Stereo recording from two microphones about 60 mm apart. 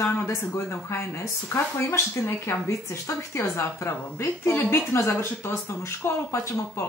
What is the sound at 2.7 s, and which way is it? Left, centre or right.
Speech, left.